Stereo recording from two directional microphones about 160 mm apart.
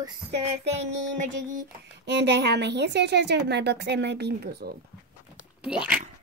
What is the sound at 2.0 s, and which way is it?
Speech, 90° right.